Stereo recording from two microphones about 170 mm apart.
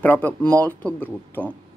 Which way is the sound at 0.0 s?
10° left (ahead or behind).